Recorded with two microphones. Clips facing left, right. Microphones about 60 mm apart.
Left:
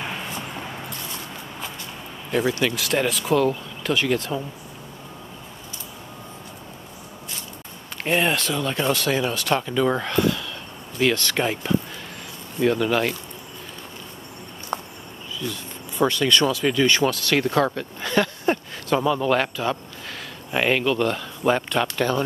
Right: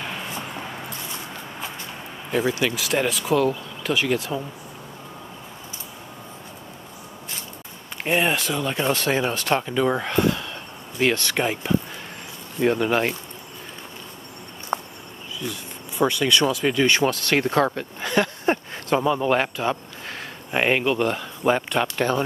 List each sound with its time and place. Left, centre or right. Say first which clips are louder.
0.0 s a sound: even; centre
2.3 s speech: even; centre
8.0 s speech: even; centre
8.8 s speech: right 1 dB; right
9.6 s speech: even; centre
10.0 s a sound: even; right
11.3 s speech: even; centre
12.5 s speech: even; right
14.7 s a sound: right 2 dB; centre
16.0 s speech: even; centre; by 17.6 s right
17.7 s a sound: even; right
19.0 s speech: even; centre